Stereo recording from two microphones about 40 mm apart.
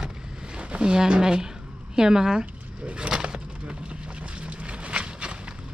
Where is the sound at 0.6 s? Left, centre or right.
Right.